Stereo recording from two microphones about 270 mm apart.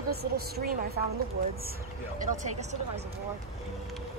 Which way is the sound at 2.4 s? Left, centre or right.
Right.